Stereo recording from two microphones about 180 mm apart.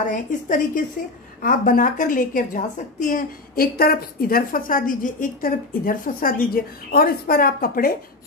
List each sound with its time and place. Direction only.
0.1 s a woman's voice: 45° left (ahead or behind)